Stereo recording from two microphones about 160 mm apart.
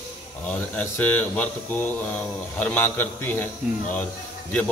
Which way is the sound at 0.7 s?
10° left (ahead or behind).